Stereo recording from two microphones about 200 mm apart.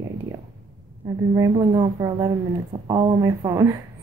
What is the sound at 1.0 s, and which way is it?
A woman's voice, 20° right (ahead or behind).